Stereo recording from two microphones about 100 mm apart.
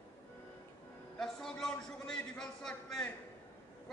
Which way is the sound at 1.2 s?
5° left (ahead or behind).